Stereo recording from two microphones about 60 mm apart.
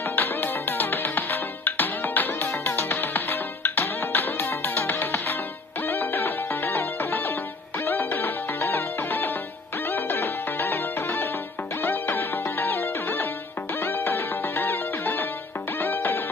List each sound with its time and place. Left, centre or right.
0.0 s music: left